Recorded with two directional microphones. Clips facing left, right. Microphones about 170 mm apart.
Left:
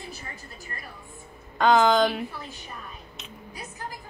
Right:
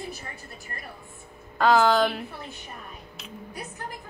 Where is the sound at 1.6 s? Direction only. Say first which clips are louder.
Left 1 dB; 5° right (ahead or behind).